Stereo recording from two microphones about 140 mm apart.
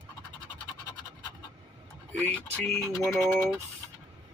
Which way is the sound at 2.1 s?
10° left (ahead or behind).